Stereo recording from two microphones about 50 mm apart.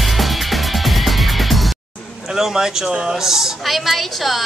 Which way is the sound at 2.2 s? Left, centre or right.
Centre.